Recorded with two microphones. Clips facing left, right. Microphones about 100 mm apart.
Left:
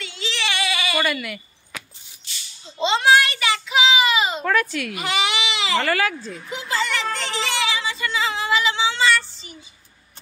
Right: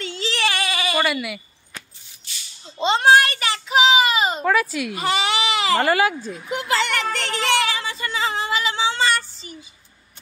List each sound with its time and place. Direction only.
0.0 s a sound: 40° right (ahead or behind)
1.0 s speech: 10° right (ahead or behind)
2.8 s child singing: 40° right (ahead or behind)
4.4 s speech: 5° right (ahead or behind)
4.9 s speech: 35° right (ahead or behind)
5.9 s speech: 20° right (ahead or behind)
6.5 s a sound: 70° right (ahead or behind); by 9.5 s 40° right (ahead or behind)